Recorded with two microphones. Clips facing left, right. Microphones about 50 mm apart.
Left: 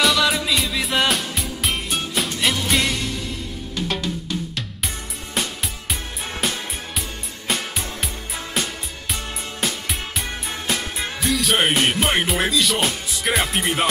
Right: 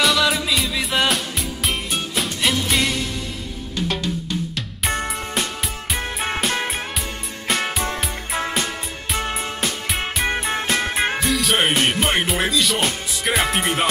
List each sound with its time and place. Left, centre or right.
0.0 s music: centre
3.8 s drum: centre
5.3 s music: centre
5.9 s music: right
6.5 s music: right
8.6 s music: centre
10.2 s music: right
11.1 s music: centre